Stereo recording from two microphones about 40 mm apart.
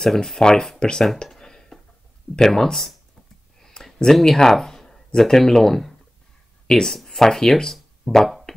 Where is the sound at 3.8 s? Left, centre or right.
Centre.